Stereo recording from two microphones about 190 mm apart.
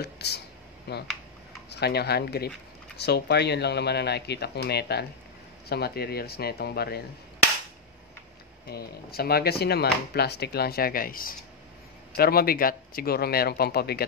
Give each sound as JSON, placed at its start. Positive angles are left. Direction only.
{"t": 0.0, "sound": "speech", "side_deg": 60}
{"t": 8.6, "sound": "speech", "side_deg": 55}